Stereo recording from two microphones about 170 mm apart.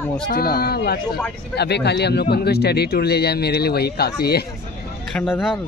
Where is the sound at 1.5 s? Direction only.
80° left.